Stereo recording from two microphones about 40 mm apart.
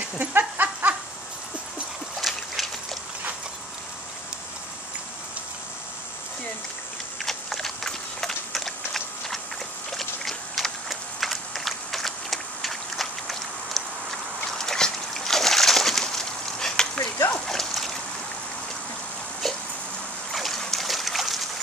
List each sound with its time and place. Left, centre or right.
0.2 s dog: right
2.2 s boat: centre
7.2 s horse: centre
8.5 s a sound: centre
14.6 s splash: centre
19.4 s a sound: centre
20.3 s trickle: centre